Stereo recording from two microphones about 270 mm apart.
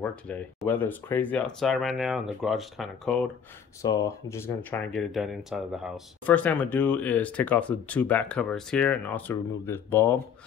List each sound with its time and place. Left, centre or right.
0.0 s speech: centre
3.8 s speech: centre